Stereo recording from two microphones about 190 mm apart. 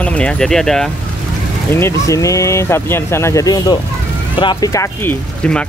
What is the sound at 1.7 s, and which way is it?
Speech, 15° left (ahead or behind).